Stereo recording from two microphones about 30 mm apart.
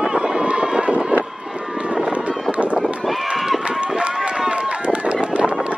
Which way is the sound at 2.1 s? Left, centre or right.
Right.